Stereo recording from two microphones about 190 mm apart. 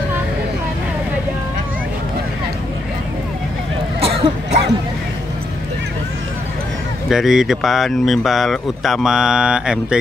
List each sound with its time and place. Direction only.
4.0 s cough: 30° right (ahead or behind)
7.1 s speech: centre (ahead or behind)